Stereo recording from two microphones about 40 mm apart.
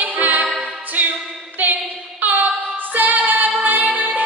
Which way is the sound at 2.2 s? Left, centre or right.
Right.